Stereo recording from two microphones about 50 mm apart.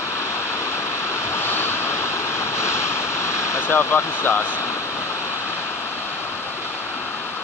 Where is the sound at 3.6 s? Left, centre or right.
Left.